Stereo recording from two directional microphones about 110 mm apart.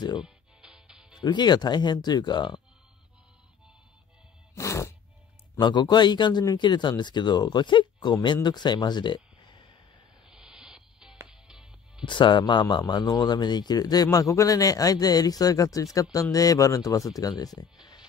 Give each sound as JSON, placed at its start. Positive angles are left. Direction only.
{"t": 0.2, "sound": "music", "side_deg": -5}
{"t": 1.2, "sound": "a man's voice", "side_deg": 40}
{"t": 4.6, "sound": "a sound", "side_deg": 25}
{"t": 5.6, "sound": "speech", "side_deg": 40}
{"t": 10.2, "sound": "a sound", "side_deg": -5}
{"t": 11.2, "sound": "music", "side_deg": -5}
{"t": 12.0, "sound": "a man's voice", "side_deg": 45}